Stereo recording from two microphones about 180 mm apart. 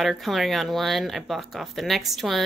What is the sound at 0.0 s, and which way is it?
A woman's voice, centre (ahead or behind).